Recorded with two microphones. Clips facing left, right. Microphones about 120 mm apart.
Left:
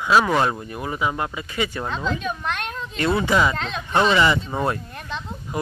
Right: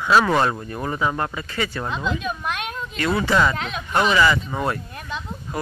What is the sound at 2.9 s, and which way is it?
Speech, 25° left (ahead or behind).